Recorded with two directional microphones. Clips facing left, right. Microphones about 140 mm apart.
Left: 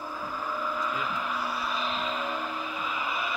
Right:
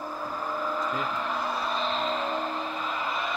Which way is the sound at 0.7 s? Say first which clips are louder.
Right 2 dB; 40° right (ahead or behind).